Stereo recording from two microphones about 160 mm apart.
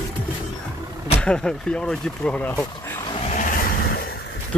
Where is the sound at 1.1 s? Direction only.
5° left (ahead or behind).